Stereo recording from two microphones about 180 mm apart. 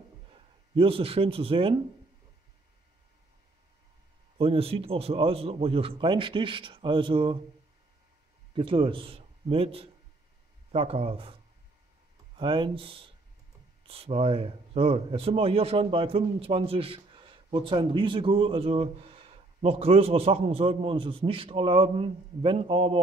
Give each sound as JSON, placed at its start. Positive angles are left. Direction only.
{"t": 0.3, "sound": "speech", "side_deg": -30}
{"t": 4.4, "sound": "a man's voice", "side_deg": -30}
{"t": 8.5, "sound": "a man's voice", "side_deg": -30}
{"t": 12.4, "sound": "a man's voice", "side_deg": -30}